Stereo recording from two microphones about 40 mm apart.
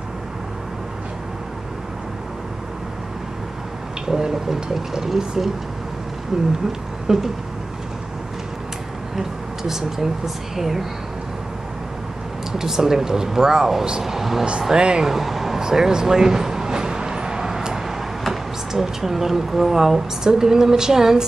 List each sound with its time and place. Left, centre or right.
4.1 s speech: centre
6.3 s speech: centre
9.1 s speech: centre
12.5 s speech: centre
14.8 s speech: right
15.0 s a sound: centre
18.2 s speech: centre